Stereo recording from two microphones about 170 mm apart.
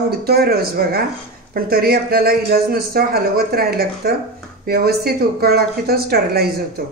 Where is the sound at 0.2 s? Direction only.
65° right (ahead or behind).